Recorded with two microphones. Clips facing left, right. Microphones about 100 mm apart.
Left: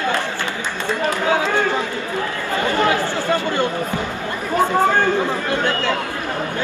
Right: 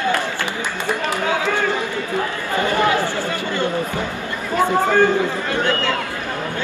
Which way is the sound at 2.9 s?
20° left (ahead or behind).